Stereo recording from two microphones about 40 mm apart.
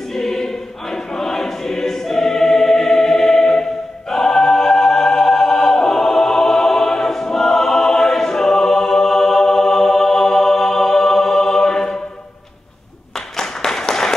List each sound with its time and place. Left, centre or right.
0.1 s choir: centre
13.4 s clapping: centre